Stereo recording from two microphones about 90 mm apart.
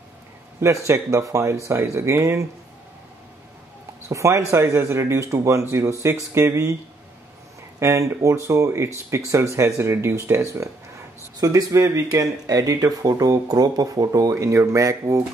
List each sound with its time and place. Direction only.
0.6 s speech: 30° right (ahead or behind)
4.1 s speech: 35° right (ahead or behind)
7.8 s speech: 35° right (ahead or behind)
11.3 s speech: 45° right (ahead or behind)